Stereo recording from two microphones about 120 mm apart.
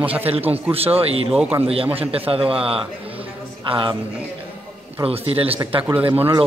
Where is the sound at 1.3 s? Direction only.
10° right (ahead or behind).